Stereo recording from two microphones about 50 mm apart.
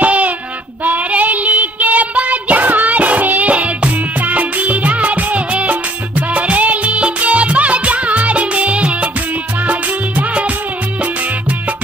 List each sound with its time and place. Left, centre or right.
0.0 s child singing: right
9.7 s music: right